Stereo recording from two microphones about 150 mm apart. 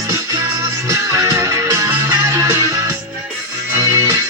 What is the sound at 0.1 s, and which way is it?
Music, 20° right (ahead or behind).